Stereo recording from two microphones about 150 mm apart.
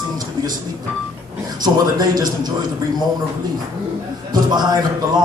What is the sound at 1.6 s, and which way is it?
Speech, 25° right (ahead or behind).